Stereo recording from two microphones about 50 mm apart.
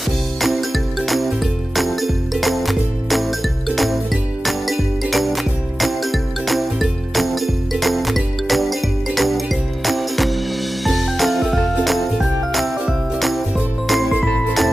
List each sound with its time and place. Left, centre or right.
0.4 s music: centre
13.8 s jingle: centre
14.2 s jingle bell: centre